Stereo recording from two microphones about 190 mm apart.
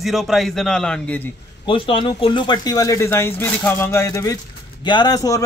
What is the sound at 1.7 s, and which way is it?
Speech, 25° left (ahead or behind).